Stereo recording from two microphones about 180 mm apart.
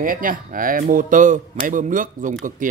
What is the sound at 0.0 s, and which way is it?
Speech, 50° right (ahead or behind).